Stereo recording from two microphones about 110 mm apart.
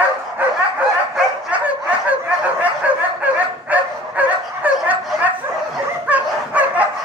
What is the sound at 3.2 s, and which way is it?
Dog, 15° right (ahead or behind).